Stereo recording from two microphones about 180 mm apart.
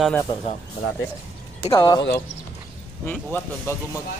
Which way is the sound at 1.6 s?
20° left (ahead or behind).